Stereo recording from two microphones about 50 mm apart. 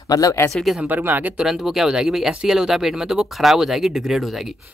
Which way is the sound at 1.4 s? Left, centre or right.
Centre.